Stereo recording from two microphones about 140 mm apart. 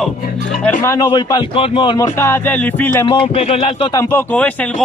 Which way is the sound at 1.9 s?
20° left (ahead or behind).